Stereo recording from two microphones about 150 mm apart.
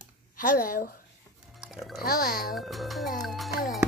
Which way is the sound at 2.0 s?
75° left (ahead or behind).